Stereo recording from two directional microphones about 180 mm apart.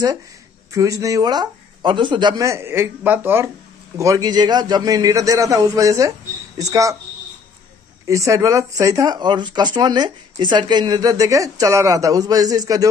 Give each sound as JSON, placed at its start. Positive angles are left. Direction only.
{"t": 0.7, "sound": "speech", "side_deg": -20}
{"t": 8.1, "sound": "speech", "side_deg": -15}